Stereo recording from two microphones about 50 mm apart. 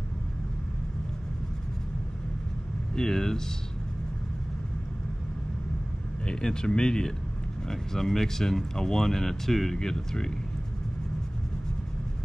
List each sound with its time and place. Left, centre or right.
2.9 s speech: centre
6.2 s speech: centre